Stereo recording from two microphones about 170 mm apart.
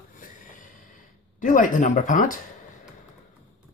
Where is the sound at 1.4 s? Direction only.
50° left (ahead or behind).